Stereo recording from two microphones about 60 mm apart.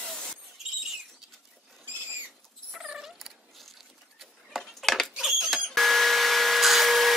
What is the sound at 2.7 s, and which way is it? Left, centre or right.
Cat, centre.